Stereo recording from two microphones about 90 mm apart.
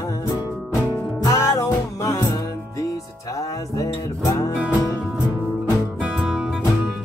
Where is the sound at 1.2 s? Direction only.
35° left (ahead or behind).